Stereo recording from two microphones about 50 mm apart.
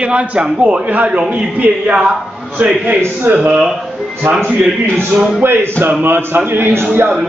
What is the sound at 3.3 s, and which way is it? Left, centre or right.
Speech, right.